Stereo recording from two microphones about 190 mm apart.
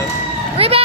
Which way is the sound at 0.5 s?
30° right (ahead or behind).